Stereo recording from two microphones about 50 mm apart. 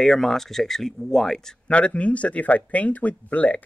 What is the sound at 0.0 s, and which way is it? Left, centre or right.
Speech, centre.